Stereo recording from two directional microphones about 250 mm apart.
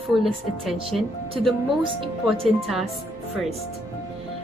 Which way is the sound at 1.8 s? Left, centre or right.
Right.